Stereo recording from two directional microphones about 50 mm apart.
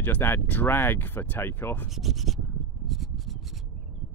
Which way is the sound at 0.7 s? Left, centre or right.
Left.